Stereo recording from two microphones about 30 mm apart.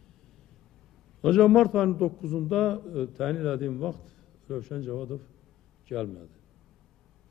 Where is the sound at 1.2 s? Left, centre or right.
Centre.